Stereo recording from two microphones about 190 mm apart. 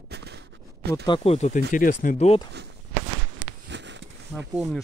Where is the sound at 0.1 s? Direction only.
60° right (ahead or behind).